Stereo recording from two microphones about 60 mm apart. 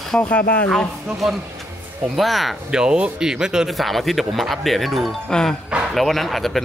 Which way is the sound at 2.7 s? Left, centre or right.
Centre.